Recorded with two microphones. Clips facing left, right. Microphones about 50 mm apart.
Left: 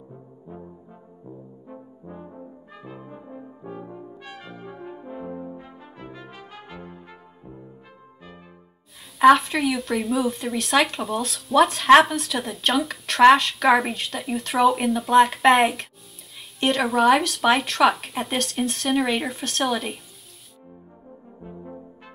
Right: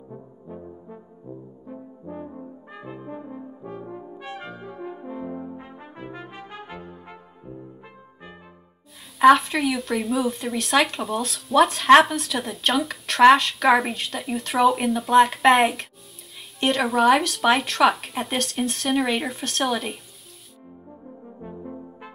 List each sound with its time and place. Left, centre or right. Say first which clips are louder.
2.7 s brass instrument: right 4 dB; centre
5.6 s brass instrument: right 2 dB; right
9.2 s speech: even; centre